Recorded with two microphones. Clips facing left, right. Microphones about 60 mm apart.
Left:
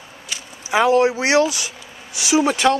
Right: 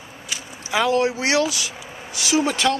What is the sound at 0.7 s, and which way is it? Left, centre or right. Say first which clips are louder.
Speech: left 4 dB; centre.